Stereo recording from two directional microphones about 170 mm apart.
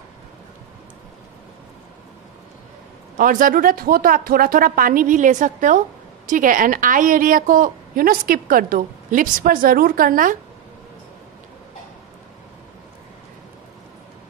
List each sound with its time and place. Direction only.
3.2 s a woman's voice: 55° right (ahead or behind)